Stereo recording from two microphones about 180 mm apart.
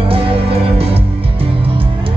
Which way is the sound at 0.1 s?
30° right (ahead or behind).